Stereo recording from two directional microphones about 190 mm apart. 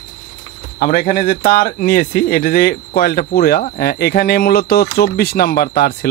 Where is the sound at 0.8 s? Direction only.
45° left (ahead or behind).